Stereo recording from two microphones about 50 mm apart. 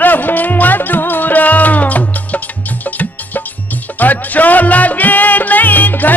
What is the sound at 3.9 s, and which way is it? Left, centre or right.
Music, left.